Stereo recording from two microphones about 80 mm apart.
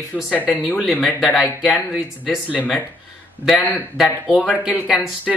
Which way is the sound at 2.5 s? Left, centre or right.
Left.